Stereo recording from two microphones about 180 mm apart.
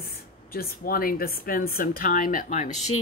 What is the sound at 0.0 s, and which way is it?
Speech, 55° left (ahead or behind).